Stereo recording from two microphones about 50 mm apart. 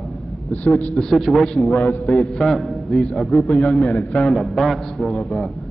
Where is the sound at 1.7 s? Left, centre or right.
Left.